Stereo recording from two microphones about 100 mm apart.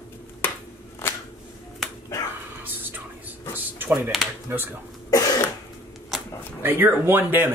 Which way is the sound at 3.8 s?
20° right (ahead or behind).